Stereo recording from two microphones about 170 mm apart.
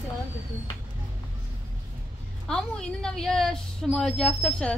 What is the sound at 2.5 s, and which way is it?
A woman's voice, 5° left (ahead or behind).